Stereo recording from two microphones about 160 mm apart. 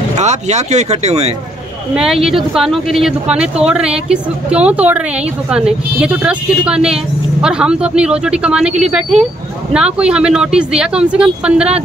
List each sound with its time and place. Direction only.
0.1 s speech: 45° right (ahead or behind)
2.0 s speech: centre (ahead or behind)